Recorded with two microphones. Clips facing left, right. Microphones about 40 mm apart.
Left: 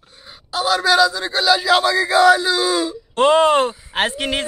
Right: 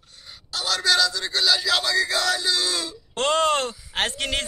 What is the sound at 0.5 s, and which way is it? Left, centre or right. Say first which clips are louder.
A man's voice: left 6 dB; centre.